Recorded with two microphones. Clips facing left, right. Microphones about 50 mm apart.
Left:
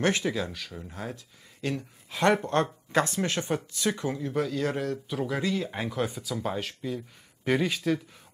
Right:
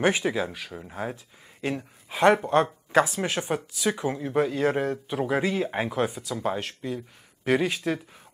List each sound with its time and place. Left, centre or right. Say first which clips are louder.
0.0 s speech: right 3 dB; centre
5.9 s speech: right 3 dB; centre